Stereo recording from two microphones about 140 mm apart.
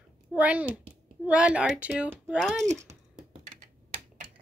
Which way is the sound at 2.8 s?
45° right (ahead or behind).